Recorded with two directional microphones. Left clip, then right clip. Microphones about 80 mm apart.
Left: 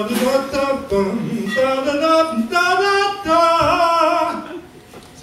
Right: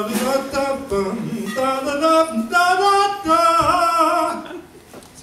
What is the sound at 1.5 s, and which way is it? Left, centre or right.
Singing, centre.